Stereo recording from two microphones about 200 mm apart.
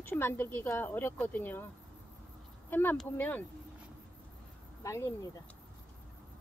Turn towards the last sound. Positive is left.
turn(degrees=15)  # may be behind; listen again after turning